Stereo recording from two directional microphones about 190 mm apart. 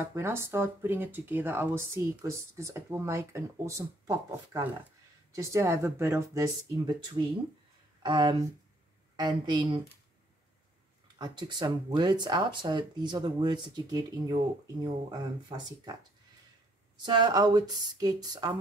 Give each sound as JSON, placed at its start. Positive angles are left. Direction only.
{"t": 0.0, "sound": "speech", "side_deg": -10}
{"t": 11.1, "sound": "speech", "side_deg": -20}